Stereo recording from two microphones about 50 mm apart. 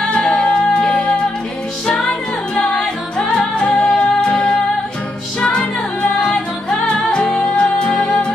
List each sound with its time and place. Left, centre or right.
0.0 s music: centre
6.3 s music: centre